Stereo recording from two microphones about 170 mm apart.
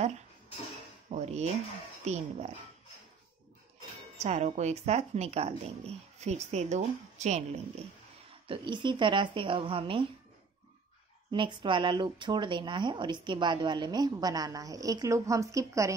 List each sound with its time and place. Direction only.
1.1 s a woman's voice: 40° right (ahead or behind)
4.2 s a woman's voice: 40° right (ahead or behind)
8.5 s speech: 30° right (ahead or behind)
11.3 s speech: 30° right (ahead or behind)